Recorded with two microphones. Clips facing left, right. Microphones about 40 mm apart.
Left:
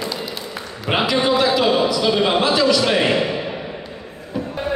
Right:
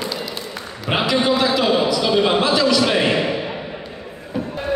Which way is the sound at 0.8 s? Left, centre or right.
Centre.